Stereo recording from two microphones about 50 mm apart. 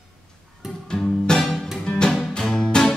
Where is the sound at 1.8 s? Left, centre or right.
Centre.